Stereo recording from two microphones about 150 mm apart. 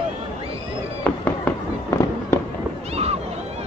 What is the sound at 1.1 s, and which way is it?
Fireworks, 10° left (ahead or behind).